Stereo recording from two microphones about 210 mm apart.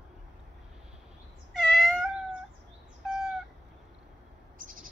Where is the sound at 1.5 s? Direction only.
Centre (ahead or behind).